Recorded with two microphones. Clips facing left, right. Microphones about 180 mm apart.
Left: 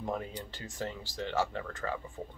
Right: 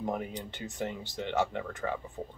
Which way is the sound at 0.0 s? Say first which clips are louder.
Right 2 dB; 15° right (ahead or behind).